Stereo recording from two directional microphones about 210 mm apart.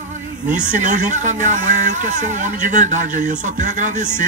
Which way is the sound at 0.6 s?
35° right (ahead or behind).